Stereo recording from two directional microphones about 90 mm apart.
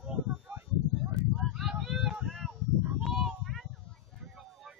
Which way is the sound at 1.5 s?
5° right (ahead or behind).